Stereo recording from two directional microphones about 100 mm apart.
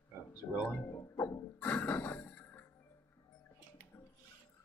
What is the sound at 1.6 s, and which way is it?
Music, 15° left (ahead or behind).